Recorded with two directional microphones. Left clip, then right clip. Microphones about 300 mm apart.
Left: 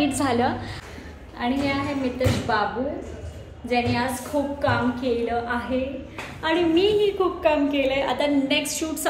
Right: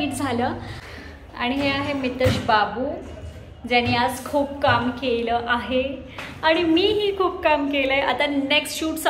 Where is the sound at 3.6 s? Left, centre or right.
Centre.